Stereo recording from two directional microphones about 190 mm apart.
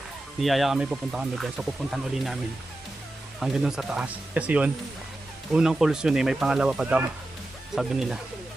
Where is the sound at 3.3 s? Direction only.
5° right (ahead or behind).